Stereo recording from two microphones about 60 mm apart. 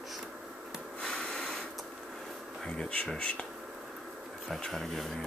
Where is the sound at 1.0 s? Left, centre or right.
Centre.